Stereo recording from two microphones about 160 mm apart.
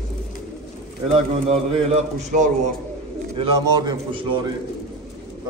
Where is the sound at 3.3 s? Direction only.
30° right (ahead or behind).